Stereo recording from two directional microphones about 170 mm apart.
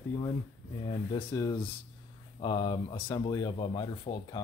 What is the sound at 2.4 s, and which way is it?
Speech, 30° left (ahead or behind).